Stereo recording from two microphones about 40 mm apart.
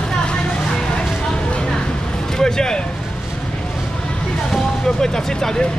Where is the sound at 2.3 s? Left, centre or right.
Centre.